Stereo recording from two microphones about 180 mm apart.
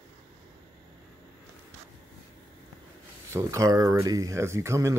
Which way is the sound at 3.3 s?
20° right (ahead or behind).